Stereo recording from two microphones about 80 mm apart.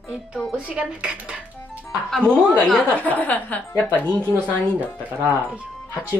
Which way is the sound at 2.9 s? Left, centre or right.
Centre.